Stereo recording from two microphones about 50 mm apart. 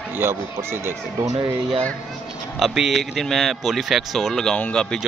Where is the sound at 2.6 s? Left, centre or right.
Centre.